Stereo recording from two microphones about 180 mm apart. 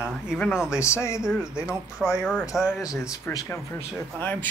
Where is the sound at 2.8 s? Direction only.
15° left (ahead or behind).